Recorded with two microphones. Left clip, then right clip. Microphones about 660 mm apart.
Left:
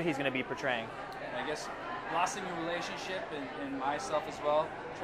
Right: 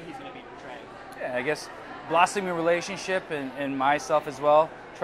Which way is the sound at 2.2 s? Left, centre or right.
Right.